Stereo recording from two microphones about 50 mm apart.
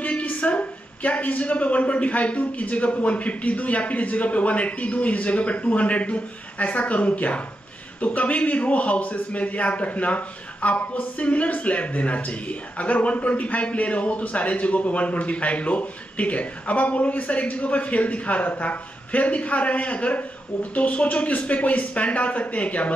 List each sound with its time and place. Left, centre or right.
0.0 s a man's voice: left